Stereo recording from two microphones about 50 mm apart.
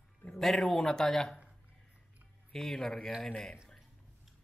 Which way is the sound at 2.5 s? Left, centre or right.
Centre.